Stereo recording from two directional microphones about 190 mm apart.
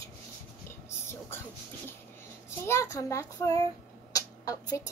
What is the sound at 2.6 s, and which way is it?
A child's voice, 15° left (ahead or behind).